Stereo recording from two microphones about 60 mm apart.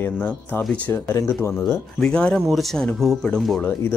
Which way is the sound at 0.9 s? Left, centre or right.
Left.